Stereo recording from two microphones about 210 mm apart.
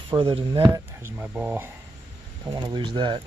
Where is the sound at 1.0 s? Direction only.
10° right (ahead or behind).